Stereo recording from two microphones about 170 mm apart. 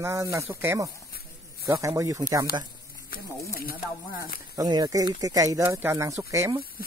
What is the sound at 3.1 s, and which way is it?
Speech, 55° left (ahead or behind).